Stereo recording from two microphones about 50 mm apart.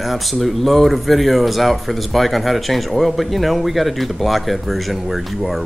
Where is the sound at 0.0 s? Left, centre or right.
Centre.